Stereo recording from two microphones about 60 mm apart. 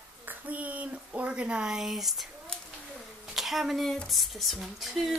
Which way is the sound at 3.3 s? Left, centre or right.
Centre.